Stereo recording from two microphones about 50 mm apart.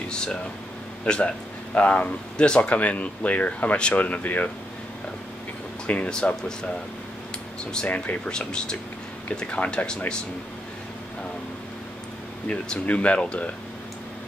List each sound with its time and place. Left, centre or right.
0.1 s air conditioning: centre
1.0 s speech: centre
2.3 s speech: centre
5.9 s speech: left
7.8 s speech: left
8.3 s speech: centre
12.4 s speech: left